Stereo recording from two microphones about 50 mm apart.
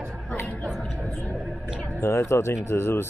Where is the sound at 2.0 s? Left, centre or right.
Left.